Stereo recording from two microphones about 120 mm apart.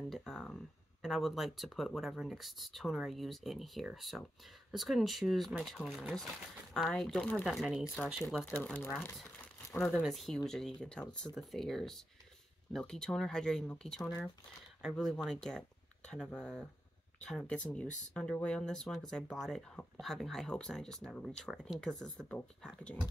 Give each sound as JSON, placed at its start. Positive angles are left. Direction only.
{"t": 0.1, "sound": "speech", "side_deg": 5}
{"t": 9.6, "sound": "crumpling", "side_deg": 25}
{"t": 10.0, "sound": "speech", "side_deg": 0}